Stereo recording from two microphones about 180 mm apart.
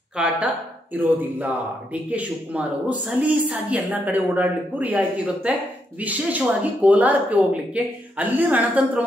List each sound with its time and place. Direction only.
0.1 s a woman's voice: 5° right (ahead or behind)